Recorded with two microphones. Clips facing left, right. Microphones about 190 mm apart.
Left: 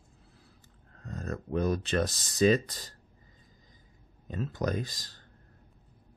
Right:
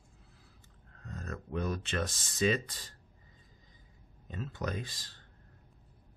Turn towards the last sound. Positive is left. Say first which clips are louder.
# left 6 dB
turn(degrees=40)  # may be behind; listen again after turning